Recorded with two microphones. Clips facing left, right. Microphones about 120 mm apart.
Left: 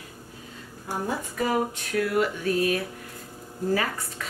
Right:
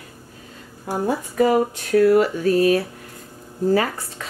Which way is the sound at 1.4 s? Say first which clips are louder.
Right 8 dB; 35° right (ahead or behind).